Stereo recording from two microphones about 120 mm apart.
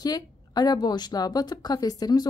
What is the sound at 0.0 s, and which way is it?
A woman's voice, 35° left (ahead or behind).